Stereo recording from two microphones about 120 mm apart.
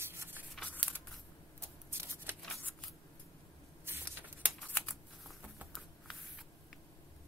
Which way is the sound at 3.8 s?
15° right (ahead or behind).